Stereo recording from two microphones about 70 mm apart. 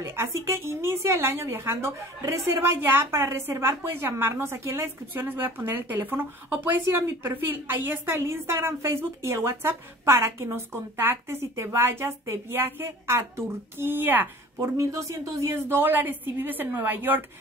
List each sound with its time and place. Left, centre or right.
0.0 s a woman's voice: right
14.6 s a woman's voice: right